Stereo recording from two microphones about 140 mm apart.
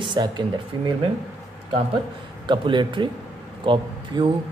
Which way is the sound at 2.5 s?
35° right (ahead or behind).